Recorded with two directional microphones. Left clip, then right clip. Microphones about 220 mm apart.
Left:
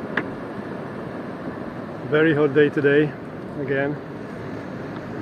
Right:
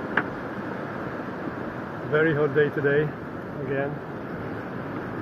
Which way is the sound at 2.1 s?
5° left (ahead or behind).